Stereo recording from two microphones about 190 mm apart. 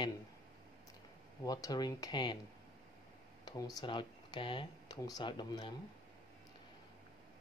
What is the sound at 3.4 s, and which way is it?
Speech, 20° left (ahead or behind).